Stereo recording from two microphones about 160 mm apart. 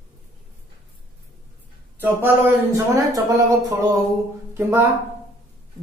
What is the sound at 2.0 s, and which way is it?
Speech, 15° right (ahead or behind).